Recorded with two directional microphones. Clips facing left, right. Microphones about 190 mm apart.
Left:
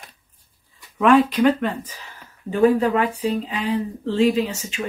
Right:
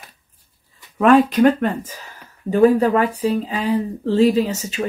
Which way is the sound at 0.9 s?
45° right (ahead or behind).